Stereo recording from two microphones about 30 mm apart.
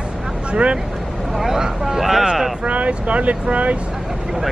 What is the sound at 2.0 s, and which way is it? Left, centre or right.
Speech, centre.